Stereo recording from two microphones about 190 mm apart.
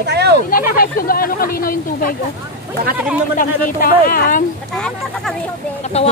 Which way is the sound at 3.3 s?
45° left (ahead or behind).